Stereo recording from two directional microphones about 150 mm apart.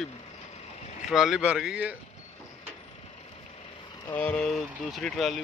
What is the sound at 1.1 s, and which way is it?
Speech, centre (ahead or behind).